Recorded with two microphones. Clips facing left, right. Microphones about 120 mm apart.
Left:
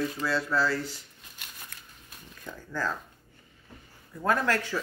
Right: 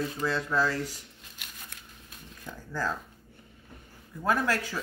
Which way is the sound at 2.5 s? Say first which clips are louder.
Even; 10° right (ahead or behind).